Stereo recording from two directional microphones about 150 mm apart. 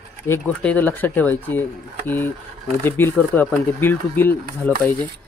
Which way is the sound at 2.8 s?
15° left (ahead or behind).